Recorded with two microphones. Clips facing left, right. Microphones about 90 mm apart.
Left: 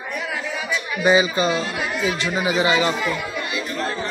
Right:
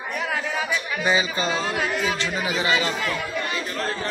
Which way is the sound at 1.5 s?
35° right (ahead or behind).